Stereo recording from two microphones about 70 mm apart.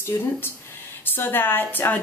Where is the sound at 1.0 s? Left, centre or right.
Left.